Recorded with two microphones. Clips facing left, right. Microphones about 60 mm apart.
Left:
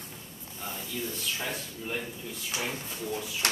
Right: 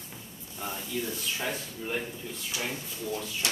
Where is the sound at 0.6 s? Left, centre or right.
Right.